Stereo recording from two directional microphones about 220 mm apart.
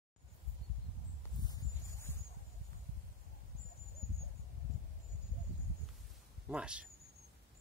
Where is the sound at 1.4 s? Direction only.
15° left (ahead or behind).